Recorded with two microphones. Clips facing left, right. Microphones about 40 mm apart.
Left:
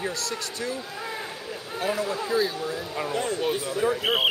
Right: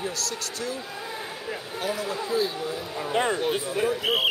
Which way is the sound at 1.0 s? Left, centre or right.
Centre.